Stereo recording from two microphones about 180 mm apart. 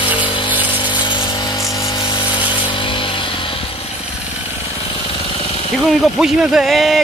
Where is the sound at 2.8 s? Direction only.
30° left (ahead or behind).